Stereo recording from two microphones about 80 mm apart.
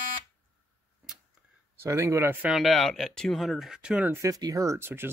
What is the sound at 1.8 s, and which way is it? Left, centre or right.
Speech, right.